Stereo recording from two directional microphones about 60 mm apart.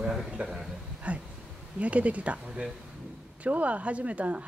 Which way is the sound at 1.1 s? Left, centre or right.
Right.